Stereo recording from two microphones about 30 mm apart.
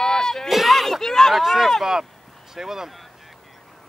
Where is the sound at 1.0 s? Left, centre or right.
Centre.